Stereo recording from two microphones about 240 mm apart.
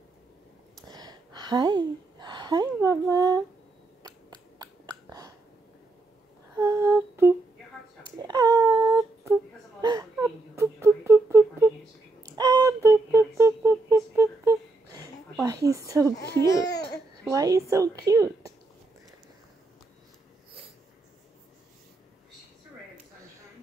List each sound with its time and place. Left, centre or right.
0.8 s a sound: centre
6.5 s humming: centre
8.2 s baby cry: centre
9.8 s a sound: centre
16.4 s babbling: centre
17.3 s a woman's voice: centre